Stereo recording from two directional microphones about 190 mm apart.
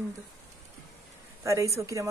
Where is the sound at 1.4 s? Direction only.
15° right (ahead or behind).